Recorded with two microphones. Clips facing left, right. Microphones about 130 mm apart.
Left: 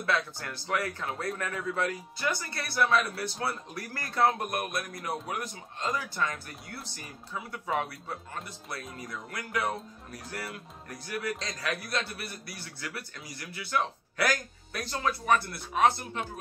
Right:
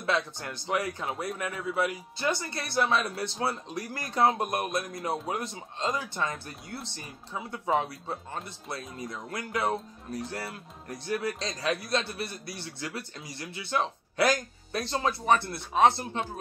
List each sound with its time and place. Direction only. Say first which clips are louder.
0.0 s a man's voice: right 1 dB; 20° right (ahead or behind)
2.1 s speech: right 2 dB; 25° right (ahead or behind)